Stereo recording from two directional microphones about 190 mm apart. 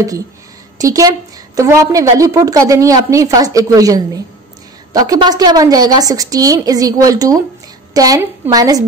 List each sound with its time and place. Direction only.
0.7 s a woman's voice: 20° right (ahead or behind)